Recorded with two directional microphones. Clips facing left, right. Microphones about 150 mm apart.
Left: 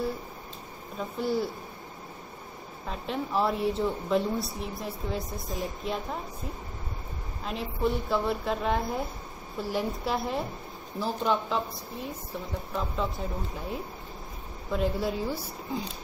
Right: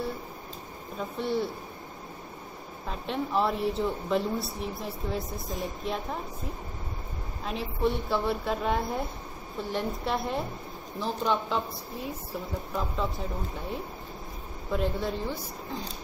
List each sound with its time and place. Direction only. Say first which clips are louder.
0.9 s a woman's voice: left 1 dB; centre (ahead or behind)
2.9 s a woman's voice: right 1 dB; centre (ahead or behind)
7.4 s a woman's voice: right 1 dB; centre (ahead or behind)
14.7 s a woman's voice: left 1 dB; 5° left (ahead or behind)